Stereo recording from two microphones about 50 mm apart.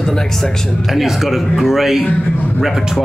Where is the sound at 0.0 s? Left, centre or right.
Centre.